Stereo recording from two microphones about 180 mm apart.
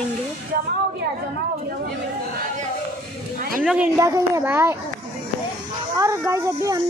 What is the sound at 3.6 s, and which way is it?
A woman's voice, 10° right (ahead or behind).